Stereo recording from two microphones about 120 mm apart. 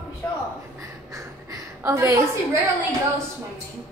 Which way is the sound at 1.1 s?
25° right (ahead or behind).